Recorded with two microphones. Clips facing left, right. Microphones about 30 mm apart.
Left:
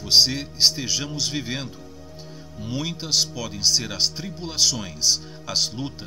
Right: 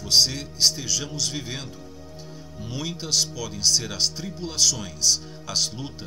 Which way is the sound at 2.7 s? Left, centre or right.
Centre.